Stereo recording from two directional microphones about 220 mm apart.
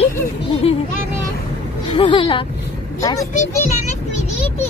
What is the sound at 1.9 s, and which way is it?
Speech, 25° left (ahead or behind).